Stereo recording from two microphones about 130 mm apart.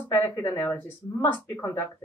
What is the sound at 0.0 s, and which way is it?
Speech, 15° left (ahead or behind).